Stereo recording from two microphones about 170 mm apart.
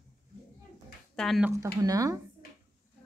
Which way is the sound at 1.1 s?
Centre (ahead or behind).